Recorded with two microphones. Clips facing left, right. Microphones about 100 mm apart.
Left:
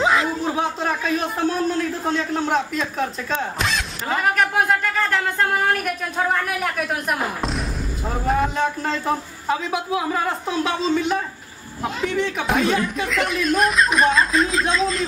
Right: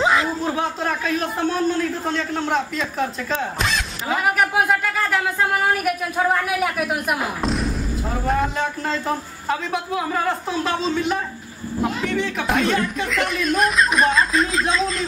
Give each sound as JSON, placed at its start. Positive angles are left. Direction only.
{"t": 0.0, "sound": "speech", "side_deg": 0}